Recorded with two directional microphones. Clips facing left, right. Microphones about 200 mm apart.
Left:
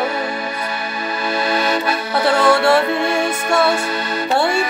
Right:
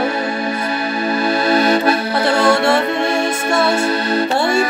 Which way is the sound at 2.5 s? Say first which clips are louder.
Left 1 dB; 25° right (ahead or behind).